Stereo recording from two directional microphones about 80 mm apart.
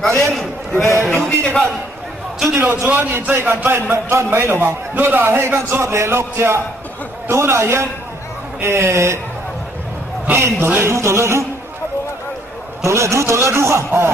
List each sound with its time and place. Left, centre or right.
0.2 s a man's voice: centre
2.6 s a man's voice: right
10.2 s a man's voice: right
12.8 s a man's voice: right